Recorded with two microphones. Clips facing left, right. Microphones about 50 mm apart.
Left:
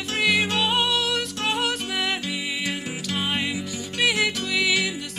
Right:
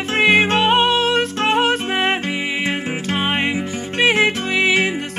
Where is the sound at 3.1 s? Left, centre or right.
Right.